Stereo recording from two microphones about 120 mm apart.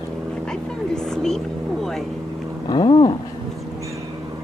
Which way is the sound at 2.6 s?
40° left (ahead or behind).